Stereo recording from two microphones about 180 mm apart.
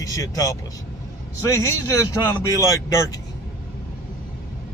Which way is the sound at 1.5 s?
15° left (ahead or behind).